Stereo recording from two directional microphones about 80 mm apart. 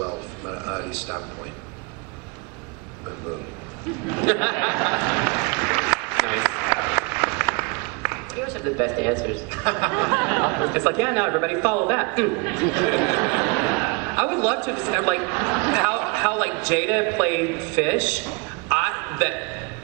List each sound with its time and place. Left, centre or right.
0.7 s a man's voice: centre
4.1 s speech: centre
18.7 s a sound: centre